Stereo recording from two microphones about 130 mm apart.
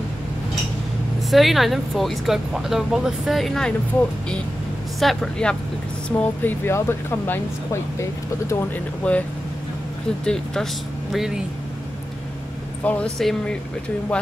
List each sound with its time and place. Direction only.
1.3 s speech: centre (ahead or behind)
5.0 s speech: 5° left (ahead or behind)
10.2 s speech: 5° left (ahead or behind)
12.8 s speech: 10° left (ahead or behind)